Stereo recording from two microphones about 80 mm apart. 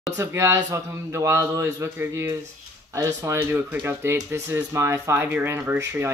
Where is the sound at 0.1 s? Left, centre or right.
Right.